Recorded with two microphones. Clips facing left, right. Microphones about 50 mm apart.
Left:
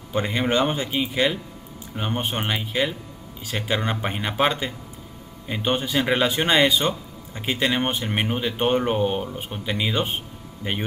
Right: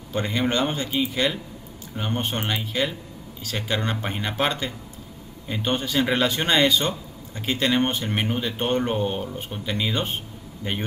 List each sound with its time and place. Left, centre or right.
0.1 s a man's voice: centre